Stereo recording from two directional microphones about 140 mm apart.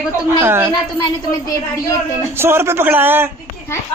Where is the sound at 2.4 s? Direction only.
15° right (ahead or behind).